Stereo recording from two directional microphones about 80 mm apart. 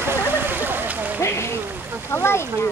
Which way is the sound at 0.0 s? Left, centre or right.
Right.